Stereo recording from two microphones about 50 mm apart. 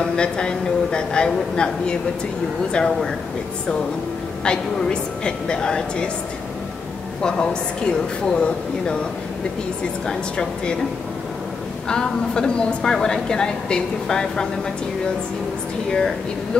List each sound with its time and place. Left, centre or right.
0.0 s a man's voice: centre
4.5 s a woman's voice: centre
7.2 s a woman's voice: centre
10.0 s a man's voice: centre
11.9 s a woman's voice: centre